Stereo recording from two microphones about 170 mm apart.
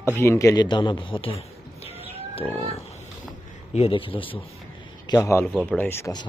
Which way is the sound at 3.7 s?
35° left (ahead or behind).